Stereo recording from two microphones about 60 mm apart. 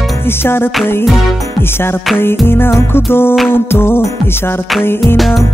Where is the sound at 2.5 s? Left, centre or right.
Left.